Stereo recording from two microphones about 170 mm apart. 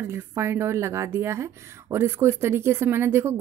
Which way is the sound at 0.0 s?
15° right (ahead or behind).